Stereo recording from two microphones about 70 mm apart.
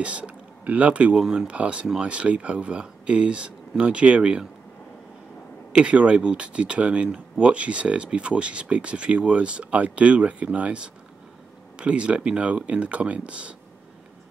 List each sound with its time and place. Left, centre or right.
0.0 s speech: centre
5.7 s speech: centre